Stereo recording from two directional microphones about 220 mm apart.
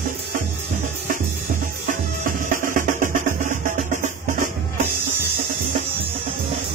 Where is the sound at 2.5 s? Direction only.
35° right (ahead or behind).